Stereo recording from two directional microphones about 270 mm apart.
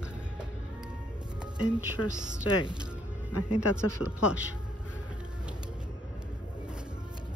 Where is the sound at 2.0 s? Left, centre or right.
Left.